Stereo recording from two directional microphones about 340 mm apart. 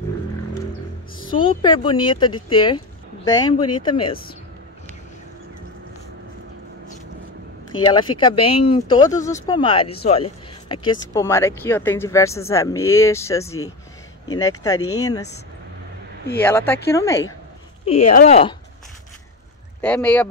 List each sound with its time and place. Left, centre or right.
1.3 s speech: centre
7.8 s speech: centre
16.3 s speech: centre
19.8 s speech: centre